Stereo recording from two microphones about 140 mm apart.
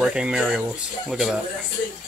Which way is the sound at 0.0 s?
5° right (ahead or behind).